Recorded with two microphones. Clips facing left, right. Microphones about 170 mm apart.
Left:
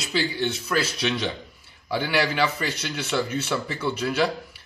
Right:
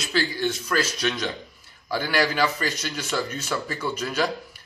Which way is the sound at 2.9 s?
5° left (ahead or behind).